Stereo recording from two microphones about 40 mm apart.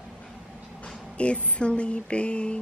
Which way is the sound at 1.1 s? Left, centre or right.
Left.